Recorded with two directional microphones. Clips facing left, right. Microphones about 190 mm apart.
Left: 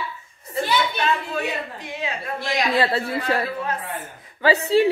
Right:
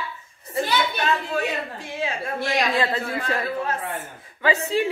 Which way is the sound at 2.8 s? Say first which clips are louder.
Left 2 dB; 35° left (ahead or behind).